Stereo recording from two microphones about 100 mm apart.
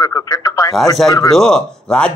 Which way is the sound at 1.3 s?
5° left (ahead or behind).